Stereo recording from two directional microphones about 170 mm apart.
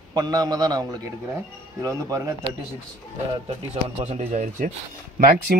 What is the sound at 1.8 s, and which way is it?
Speech, 20° right (ahead or behind).